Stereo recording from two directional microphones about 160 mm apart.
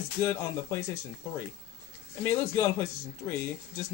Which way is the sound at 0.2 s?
15° left (ahead or behind).